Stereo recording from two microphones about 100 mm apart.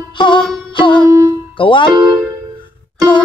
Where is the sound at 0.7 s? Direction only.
50° left (ahead or behind).